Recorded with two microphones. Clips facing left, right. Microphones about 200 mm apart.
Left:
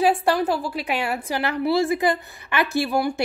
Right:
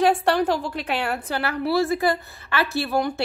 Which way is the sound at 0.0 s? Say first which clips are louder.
Even; 5° left (ahead or behind).